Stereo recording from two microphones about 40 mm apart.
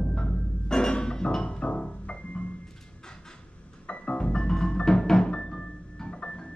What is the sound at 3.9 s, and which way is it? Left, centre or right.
Music, left.